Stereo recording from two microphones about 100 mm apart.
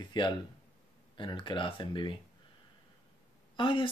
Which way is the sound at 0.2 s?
50° left (ahead or behind).